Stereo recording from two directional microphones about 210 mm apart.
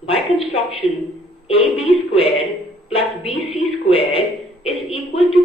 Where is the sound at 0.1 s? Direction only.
25° left (ahead or behind).